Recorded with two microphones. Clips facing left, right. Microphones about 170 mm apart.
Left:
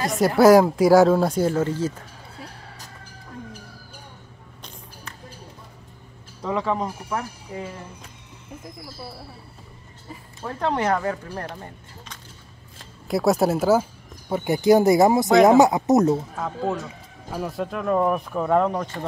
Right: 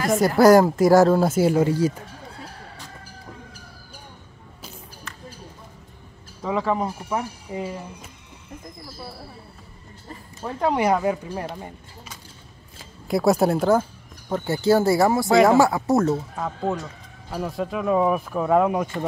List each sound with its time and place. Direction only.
0.1 s speech: centre (ahead or behind)
6.4 s speech: centre (ahead or behind)
10.4 s speech: 10° right (ahead or behind)
14.3 s speech: 15° left (ahead or behind)
16.3 s speech: centre (ahead or behind)